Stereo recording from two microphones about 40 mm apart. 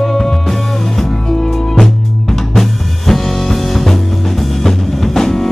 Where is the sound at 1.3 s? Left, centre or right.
Centre.